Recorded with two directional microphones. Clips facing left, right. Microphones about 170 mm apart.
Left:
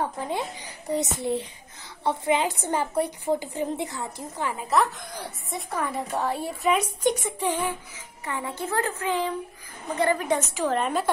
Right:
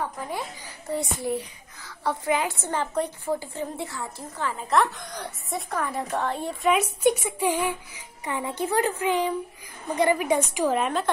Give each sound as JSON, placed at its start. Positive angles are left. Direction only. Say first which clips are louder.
{"t": 0.8, "sound": "a child's voice", "louder": "left 1 dB", "side_deg": 20}
{"t": 4.6, "sound": "a woman's voice", "louder": "right 1 dB", "side_deg": 0}